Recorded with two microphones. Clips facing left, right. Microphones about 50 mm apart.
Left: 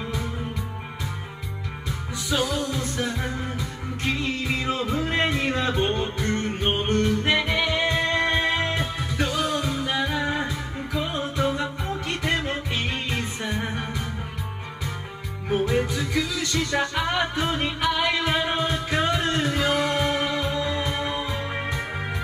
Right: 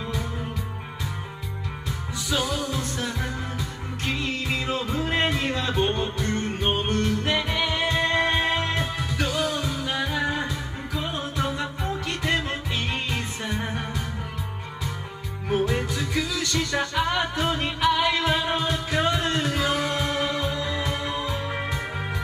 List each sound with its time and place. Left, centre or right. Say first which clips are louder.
2.2 s music: left 2 dB; left
4.6 s music: left 1 dB; left
15.5 s music: left 1 dB; left